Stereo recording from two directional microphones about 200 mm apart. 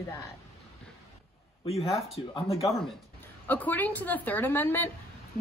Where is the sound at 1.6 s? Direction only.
30° left (ahead or behind).